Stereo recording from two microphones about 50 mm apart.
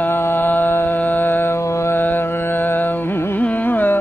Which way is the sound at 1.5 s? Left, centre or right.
Left.